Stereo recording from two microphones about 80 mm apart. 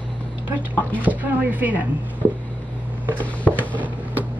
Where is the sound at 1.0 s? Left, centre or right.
Right.